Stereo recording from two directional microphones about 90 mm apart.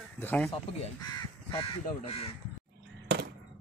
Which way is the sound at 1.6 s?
90° left.